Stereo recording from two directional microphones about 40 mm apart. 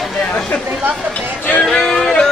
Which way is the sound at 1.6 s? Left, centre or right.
Centre.